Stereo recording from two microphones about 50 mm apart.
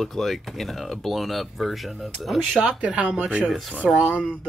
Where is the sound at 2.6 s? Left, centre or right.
Right.